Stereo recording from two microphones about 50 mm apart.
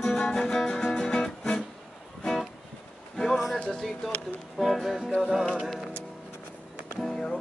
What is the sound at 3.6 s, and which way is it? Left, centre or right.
Music, centre.